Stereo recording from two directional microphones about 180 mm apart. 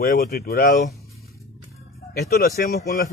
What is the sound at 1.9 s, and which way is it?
Speech, 60° left (ahead or behind).